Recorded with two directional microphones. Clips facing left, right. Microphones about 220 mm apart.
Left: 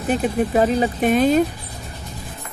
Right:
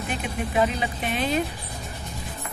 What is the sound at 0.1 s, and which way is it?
Speech, 40° left (ahead or behind).